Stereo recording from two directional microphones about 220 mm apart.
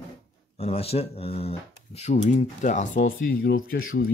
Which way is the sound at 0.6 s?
25° left (ahead or behind).